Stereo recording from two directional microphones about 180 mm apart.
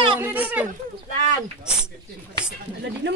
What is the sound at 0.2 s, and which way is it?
Speech, 10° right (ahead or behind).